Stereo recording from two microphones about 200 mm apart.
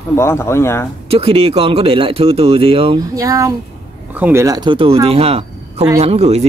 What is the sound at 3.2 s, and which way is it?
Speech, 15° right (ahead or behind).